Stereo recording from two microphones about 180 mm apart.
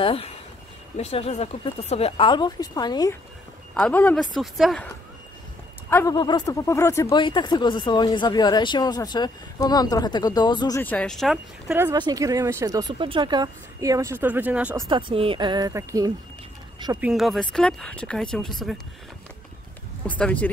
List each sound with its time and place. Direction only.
0.0 s speech: 30° left (ahead or behind)
3.7 s speech: 5° left (ahead or behind)
5.9 s speech: 15° left (ahead or behind)
6.1 s speech: 25° left (ahead or behind)
10.8 s speech: 5° left (ahead or behind)
11.7 s speech: 15° right (ahead or behind)
14.9 s speech: 30° right (ahead or behind)
17.0 s speech: centre (ahead or behind)
20.1 s speech: 5° left (ahead or behind)